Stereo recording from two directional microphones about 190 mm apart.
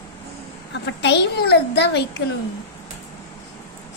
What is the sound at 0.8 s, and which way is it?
A woman's voice, 65° left (ahead or behind).